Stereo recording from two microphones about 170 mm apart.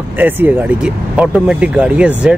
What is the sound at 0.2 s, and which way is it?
Speech, 10° right (ahead or behind).